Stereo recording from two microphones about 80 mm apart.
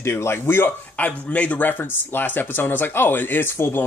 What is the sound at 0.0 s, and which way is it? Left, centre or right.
Speech, left.